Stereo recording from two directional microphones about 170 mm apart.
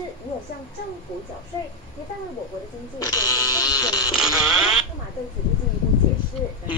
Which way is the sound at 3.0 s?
20° left (ahead or behind).